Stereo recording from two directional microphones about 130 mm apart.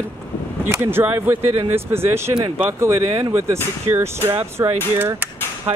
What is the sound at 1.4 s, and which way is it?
Speech, 50° right (ahead or behind).